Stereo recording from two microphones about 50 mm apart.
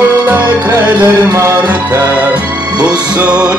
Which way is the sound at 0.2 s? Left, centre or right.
Right.